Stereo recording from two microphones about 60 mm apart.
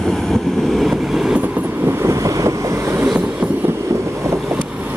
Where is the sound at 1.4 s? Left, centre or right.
Right.